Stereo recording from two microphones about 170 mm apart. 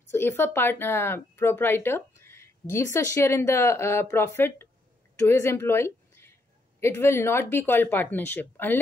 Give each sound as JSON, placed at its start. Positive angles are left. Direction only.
{"t": 0.1, "sound": "a woman's voice", "side_deg": 15}